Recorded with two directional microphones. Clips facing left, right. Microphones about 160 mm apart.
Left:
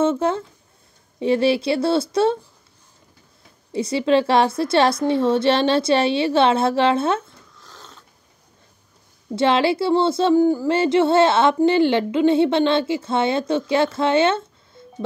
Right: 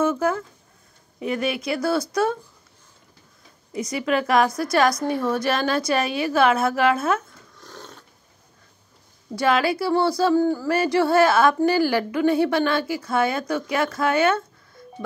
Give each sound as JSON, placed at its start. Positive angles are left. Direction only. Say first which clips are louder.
{"t": 0.0, "sound": "speech", "louder": "left 2 dB", "side_deg": 25}
{"t": 3.7, "sound": "speech", "louder": "left 5 dB", "side_deg": 30}
{"t": 7.6, "sound": "a sound", "louder": "right 5 dB", "side_deg": -55}
{"t": 9.3, "sound": "speech", "louder": "left 3 dB", "side_deg": 25}
{"t": 14.8, "sound": "telephone dialing", "louder": "even", "side_deg": 25}